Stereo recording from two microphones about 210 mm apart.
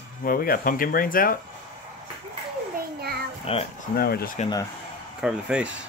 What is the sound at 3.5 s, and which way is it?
Speech, 30° left (ahead or behind).